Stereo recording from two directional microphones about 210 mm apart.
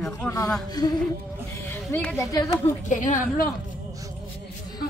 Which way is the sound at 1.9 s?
10° left (ahead or behind).